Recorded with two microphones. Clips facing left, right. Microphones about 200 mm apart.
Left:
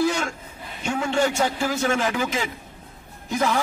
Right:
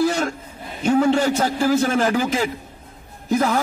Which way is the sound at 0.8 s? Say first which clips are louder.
Right 6 dB; 35° right (ahead or behind).